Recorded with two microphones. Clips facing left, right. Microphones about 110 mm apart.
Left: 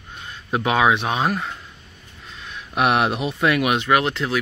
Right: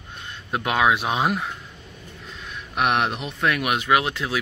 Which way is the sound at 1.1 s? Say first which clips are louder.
Left 1 dB; 15° right (ahead or behind).